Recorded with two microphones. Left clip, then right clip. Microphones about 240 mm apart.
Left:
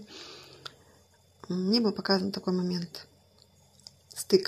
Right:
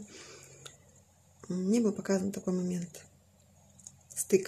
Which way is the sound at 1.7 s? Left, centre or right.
Centre.